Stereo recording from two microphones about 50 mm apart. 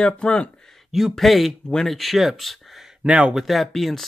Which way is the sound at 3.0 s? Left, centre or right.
Right.